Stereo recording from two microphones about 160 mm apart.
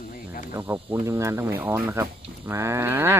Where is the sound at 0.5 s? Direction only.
20° right (ahead or behind).